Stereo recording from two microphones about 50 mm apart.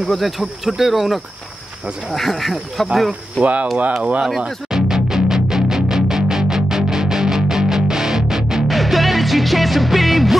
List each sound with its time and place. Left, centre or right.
0.1 s speech: centre
4.0 s speech: right
4.6 s music: centre
8.6 s music: centre